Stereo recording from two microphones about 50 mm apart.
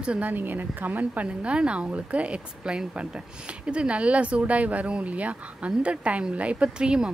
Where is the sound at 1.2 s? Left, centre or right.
Right.